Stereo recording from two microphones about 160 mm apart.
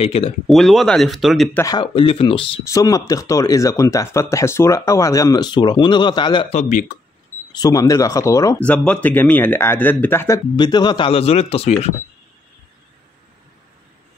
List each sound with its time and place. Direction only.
0.0 s speech: 35° left (ahead or behind)
0.5 s speech: centre (ahead or behind)
1.5 s speech: 20° left (ahead or behind)
2.6 s speech: 20° left (ahead or behind)
6.5 s speech: 50° left (ahead or behind)
7.5 s speech: 25° left (ahead or behind)
8.5 s speech: 10° left (ahead or behind); by 11.9 s 40° left (ahead or behind)